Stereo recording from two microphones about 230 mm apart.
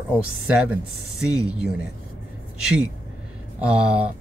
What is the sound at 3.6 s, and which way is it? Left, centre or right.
Speech, centre.